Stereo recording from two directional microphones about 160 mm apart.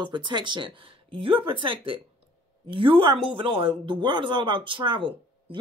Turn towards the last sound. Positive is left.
turn(degrees=-30)  # may be behind; listen again after turning